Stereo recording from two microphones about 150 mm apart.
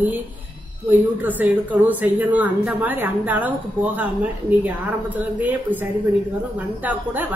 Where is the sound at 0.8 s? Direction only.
10° right (ahead or behind).